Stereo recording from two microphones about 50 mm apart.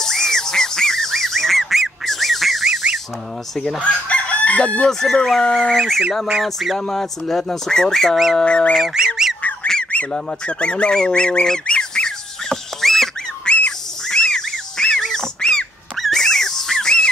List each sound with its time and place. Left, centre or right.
0.0 s goose: centre
2.6 s a sound: centre
3.5 s fowl: centre
3.8 s chicken: left
5.0 s fowl: centre
6.4 s a sound: centre
7.0 s fowl: centre
8.5 s goose: left
8.9 s goose: centre
9.4 s goose: left
10.1 s bird: centre
12.8 s a sound: centre
13.5 s a sound: left